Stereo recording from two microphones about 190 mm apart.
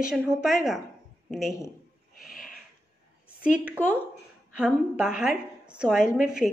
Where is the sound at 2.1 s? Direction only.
50° left (ahead or behind).